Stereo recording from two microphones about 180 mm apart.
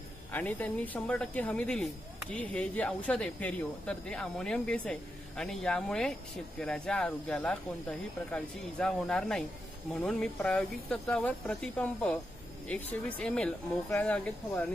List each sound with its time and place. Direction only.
0.3 s speech: 10° left (ahead or behind)